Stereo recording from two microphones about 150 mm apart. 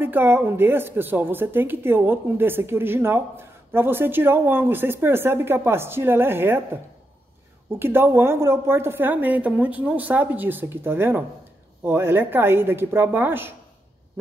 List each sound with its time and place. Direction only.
0.0 s a woman's voice: 15° right (ahead or behind)
7.8 s a woman's voice: 15° right (ahead or behind)